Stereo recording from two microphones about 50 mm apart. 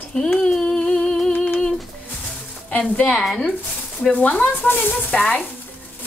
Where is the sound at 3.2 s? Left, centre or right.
Centre.